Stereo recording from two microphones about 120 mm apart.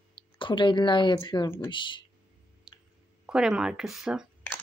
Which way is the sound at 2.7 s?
5° right (ahead or behind).